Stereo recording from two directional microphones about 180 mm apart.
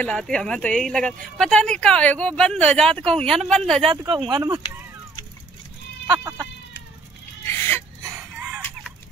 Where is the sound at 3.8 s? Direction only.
30° right (ahead or behind).